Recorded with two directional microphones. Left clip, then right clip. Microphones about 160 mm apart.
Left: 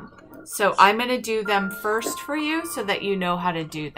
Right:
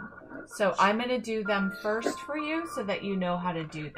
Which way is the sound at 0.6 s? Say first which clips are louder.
Left 8 dB; 15° left (ahead or behind).